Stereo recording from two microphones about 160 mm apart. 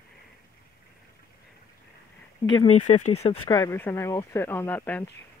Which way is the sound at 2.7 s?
45° left (ahead or behind).